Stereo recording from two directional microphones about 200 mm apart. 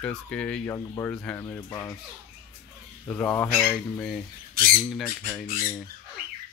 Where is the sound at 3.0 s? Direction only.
5° left (ahead or behind).